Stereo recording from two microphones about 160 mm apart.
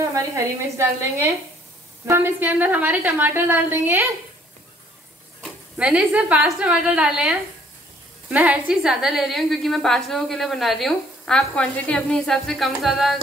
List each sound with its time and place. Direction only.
0.0 s a woman's voice: 20° right (ahead or behind)
5.8 s a woman's voice: 10° right (ahead or behind)